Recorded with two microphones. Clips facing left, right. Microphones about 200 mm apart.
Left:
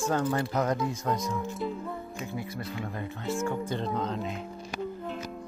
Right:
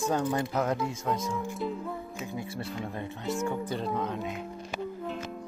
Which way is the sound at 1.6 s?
Centre (ahead or behind).